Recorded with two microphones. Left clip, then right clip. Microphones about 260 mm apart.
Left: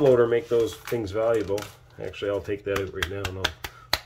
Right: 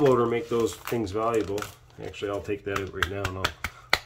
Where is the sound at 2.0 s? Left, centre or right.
Centre.